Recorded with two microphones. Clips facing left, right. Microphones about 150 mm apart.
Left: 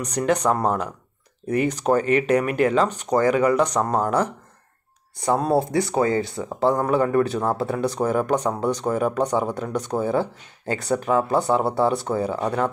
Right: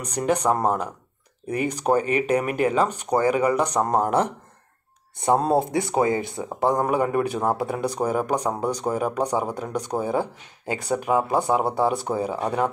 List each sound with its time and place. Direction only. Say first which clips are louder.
0.0 s speech: left 1 dB; 10° right (ahead or behind)